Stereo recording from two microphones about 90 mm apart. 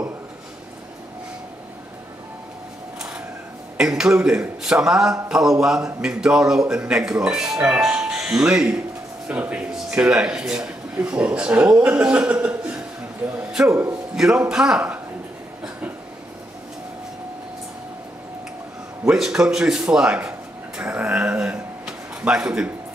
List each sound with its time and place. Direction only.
3.7 s speech: 5° right (ahead or behind)
13.7 s a man's voice: 30° right (ahead or behind)
14.1 s speech: 5° right (ahead or behind)
19.0 s a man's voice: 5° right (ahead or behind)
20.8 s a sound: 15° right (ahead or behind)